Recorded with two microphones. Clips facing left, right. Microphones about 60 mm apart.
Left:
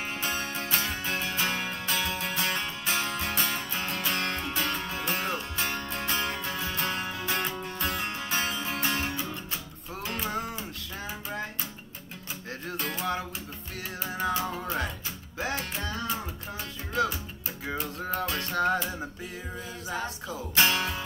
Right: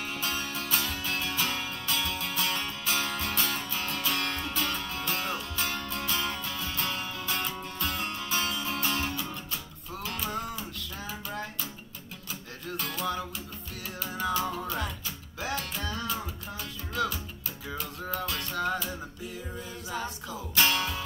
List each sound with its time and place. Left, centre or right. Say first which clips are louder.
0.0 s music: left 2 dB; left
7.3 s music: left 2 dB; left
7.8 s music: left 1 dB; left
12.6 s music: left 1 dB; left
12.9 s music: even; left
20.5 s music: left 1 dB; left